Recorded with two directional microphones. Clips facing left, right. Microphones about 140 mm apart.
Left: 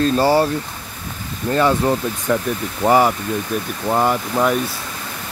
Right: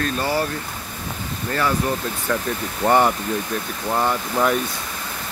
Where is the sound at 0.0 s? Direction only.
30° left (ahead or behind).